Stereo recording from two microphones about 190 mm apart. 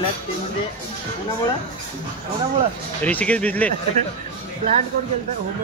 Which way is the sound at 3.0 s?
5° left (ahead or behind).